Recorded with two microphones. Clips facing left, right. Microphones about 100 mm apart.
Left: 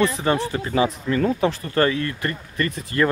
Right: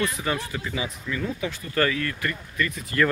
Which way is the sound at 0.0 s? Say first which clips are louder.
Left 7 dB; 35° left (ahead or behind).